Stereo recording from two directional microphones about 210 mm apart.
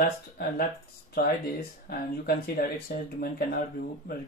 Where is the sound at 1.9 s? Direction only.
50° left (ahead or behind).